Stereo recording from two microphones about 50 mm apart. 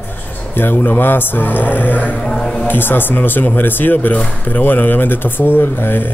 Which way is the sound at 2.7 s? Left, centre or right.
Left.